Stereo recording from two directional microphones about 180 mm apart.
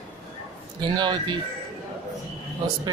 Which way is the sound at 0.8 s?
25° right (ahead or behind).